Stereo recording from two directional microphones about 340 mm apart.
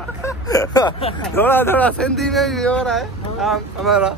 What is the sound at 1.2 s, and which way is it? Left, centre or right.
Speech, centre.